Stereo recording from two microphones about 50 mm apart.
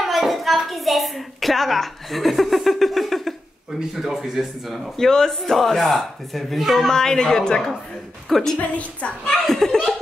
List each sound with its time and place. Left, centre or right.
0.0 s a child's voice: centre
6.9 s a woman's voice: centre
8.5 s a woman's voice: left
9.5 s a woman's voice: centre